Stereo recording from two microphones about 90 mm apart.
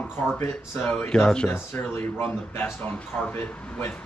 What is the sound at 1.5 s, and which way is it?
Speech, 25° left (ahead or behind).